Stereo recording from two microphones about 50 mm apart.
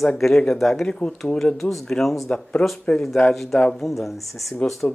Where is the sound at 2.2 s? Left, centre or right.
Left.